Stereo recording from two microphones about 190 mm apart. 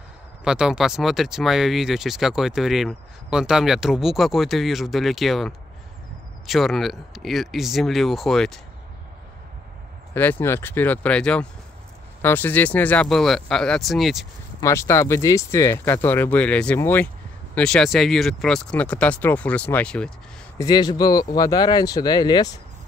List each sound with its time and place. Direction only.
0.4 s speech: 5° right (ahead or behind)
10.1 s speech: 10° left (ahead or behind)
14.6 s speech: 15° left (ahead or behind)
20.5 s speech: 20° left (ahead or behind)